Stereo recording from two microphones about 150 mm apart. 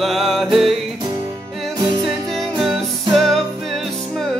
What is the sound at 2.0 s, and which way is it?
Music, centre (ahead or behind).